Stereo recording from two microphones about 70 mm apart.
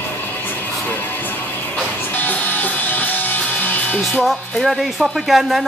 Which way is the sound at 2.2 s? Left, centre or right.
Left.